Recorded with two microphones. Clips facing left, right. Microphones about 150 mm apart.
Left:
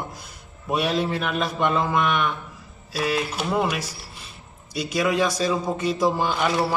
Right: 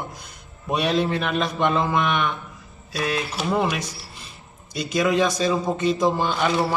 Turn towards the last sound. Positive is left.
turn(degrees=5)  # may be behind; listen again after turning